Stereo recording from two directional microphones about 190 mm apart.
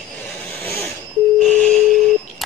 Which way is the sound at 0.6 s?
15° left (ahead or behind).